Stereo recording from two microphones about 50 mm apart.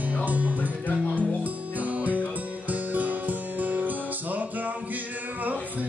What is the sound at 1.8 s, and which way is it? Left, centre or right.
Music, right.